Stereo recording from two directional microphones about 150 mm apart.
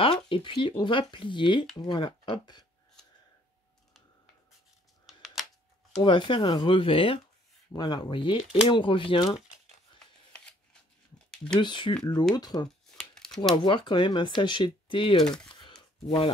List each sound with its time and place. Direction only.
0.0 s speech: 35° left (ahead or behind)
5.0 s a sound: centre (ahead or behind)
6.0 s speech: 30° left (ahead or behind)
9.9 s a sound: 5° left (ahead or behind)
11.6 s speech: 30° left (ahead or behind)
12.9 s shuffling cards: 5° left (ahead or behind)
13.7 s speech: 30° left (ahead or behind)
15.2 s speech: 5° left (ahead or behind)
15.6 s a sound: 30° left (ahead or behind)